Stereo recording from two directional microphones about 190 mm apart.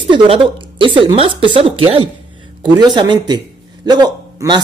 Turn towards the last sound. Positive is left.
turn(degrees=-20)  # may be behind; listen again after turning